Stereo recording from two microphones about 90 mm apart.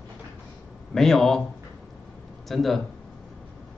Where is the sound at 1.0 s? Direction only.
5° left (ahead or behind).